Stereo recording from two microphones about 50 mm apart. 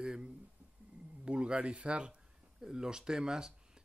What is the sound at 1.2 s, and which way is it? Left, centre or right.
Speech, right.